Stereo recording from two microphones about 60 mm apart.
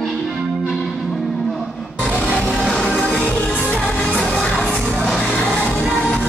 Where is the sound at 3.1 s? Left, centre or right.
Centre.